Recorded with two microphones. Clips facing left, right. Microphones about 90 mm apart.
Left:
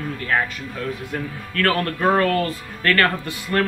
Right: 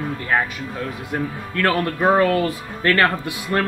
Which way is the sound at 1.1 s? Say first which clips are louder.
Right 3 dB; 20° right (ahead or behind).